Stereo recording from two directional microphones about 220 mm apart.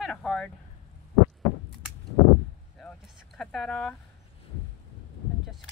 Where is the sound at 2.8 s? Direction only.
Centre (ahead or behind).